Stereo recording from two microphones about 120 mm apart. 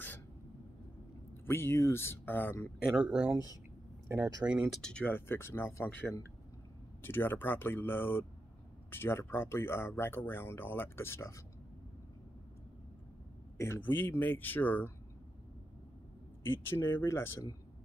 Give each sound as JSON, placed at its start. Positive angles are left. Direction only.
{"t": 1.4, "sound": "speech", "side_deg": 20}
{"t": 2.9, "sound": "speech", "side_deg": -5}
{"t": 4.6, "sound": "speech", "side_deg": 5}
{"t": 13.6, "sound": "speech", "side_deg": 20}
{"t": 16.9, "sound": "speech", "side_deg": 20}